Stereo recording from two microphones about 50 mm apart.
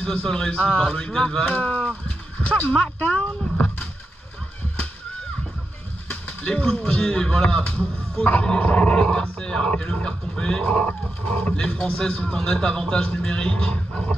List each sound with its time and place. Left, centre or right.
0.0 s speech: centre
1.5 s speech: left
6.4 s a man's voice: centre
7.6 s a man's voice: left